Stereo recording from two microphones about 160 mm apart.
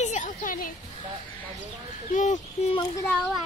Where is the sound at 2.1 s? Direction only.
50° left (ahead or behind).